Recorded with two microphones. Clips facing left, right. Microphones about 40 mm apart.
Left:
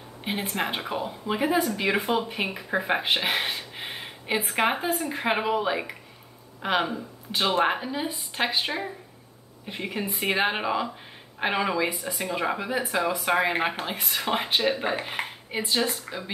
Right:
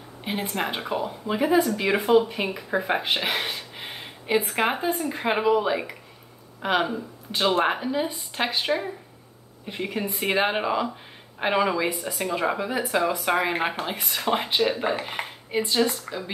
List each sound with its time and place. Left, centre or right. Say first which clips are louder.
0.2 s a sound: right 1 dB; centre
0.6 s speech: right 2 dB; centre
3.3 s a sound: even; centre
4.4 s a woman's voice: even; left
5.1 s speech: right 4 dB; centre
10.0 s a woman's voice: left 1 dB; left
10.3 s speech: right 2 dB; centre